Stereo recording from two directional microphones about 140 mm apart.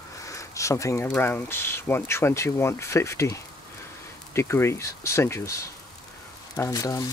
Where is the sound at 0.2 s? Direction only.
20° left (ahead or behind).